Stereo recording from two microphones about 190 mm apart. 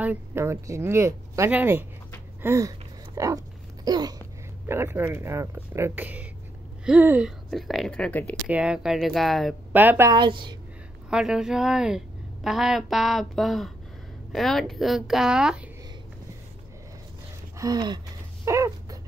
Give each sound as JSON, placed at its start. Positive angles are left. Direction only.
{"t": 0.0, "sound": "a woman's voice", "side_deg": -10}
{"t": 3.2, "sound": "a sound", "side_deg": -15}
{"t": 4.6, "sound": "a woman's voice", "side_deg": -15}
{"t": 8.5, "sound": "a woman's voice", "side_deg": -5}
{"t": 11.1, "sound": "speech", "side_deg": -5}
{"t": 17.6, "sound": "gasp", "side_deg": -20}